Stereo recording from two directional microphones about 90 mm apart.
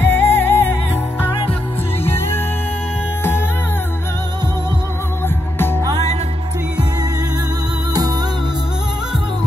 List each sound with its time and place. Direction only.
0.0 s music: 25° left (ahead or behind)
2.0 s music: 25° left (ahead or behind)
7.9 s music: 45° right (ahead or behind)